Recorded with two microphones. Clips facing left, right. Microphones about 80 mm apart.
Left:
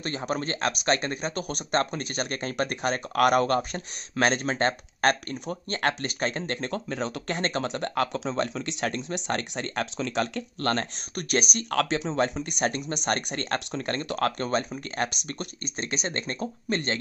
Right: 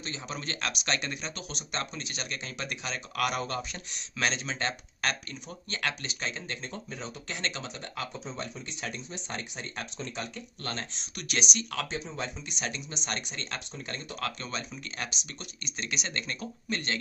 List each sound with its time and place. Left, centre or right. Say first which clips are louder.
0.0 s speech: left 8 dB; left
7.2 s speech: left 6 dB; left
7.6 s speech: left 11 dB; left
8.1 s speech: left 10 dB; left